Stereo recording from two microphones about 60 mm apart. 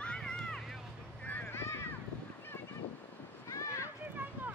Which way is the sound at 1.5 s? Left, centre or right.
Left.